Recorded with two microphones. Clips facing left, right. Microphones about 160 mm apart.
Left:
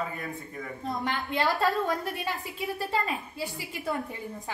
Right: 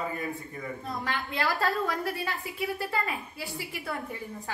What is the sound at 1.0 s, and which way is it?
A woman's voice, 20° left (ahead or behind).